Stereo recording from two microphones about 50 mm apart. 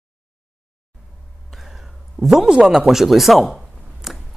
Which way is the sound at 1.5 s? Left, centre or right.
Centre.